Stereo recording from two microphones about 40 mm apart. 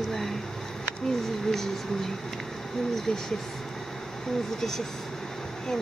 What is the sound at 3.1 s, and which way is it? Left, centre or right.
Speech, left.